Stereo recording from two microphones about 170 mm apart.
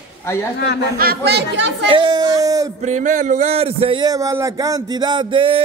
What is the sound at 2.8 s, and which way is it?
Speech, 45° right (ahead or behind).